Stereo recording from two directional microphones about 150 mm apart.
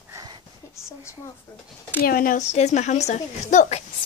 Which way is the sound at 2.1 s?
70° left (ahead or behind).